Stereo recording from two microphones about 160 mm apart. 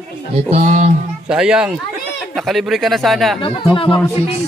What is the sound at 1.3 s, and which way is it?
A man's voice, 5° right (ahead or behind).